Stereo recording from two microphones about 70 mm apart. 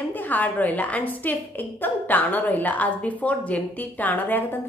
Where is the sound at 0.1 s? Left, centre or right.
Left.